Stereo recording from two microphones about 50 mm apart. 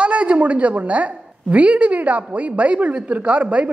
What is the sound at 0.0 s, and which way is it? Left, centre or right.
A woman's voice, right.